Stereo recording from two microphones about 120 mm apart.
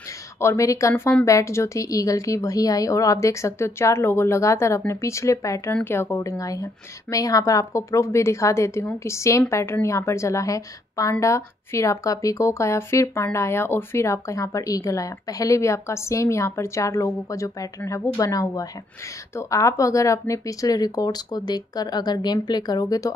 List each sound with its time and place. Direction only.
0.4 s a woman's voice: 25° left (ahead or behind)